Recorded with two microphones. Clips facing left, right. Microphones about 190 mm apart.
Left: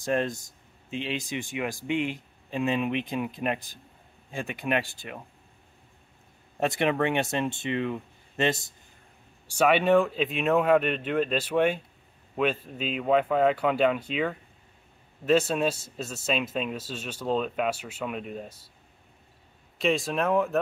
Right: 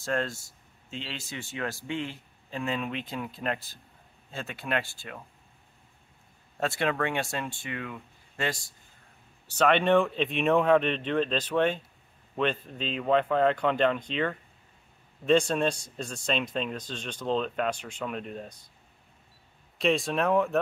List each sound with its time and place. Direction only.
0.0 s speech: 15° left (ahead or behind)
6.6 s speech: 20° left (ahead or behind)
9.5 s speech: 10° left (ahead or behind)
19.8 s speech: centre (ahead or behind)